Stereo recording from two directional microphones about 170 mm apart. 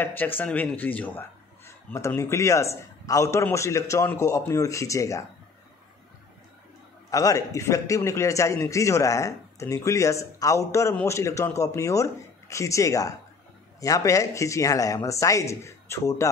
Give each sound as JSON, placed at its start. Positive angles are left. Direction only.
{"t": 0.0, "sound": "a man's voice", "side_deg": 10}
{"t": 7.1, "sound": "a man's voice", "side_deg": 20}